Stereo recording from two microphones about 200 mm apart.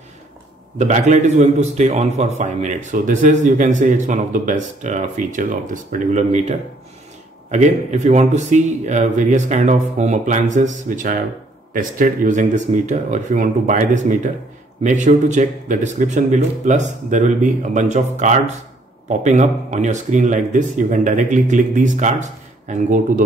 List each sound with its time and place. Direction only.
0.7 s a man's voice: 35° right (ahead or behind)
7.5 s a man's voice: 35° right (ahead or behind)